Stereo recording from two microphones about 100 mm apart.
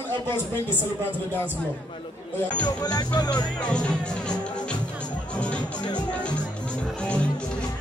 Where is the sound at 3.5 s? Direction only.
10° left (ahead or behind).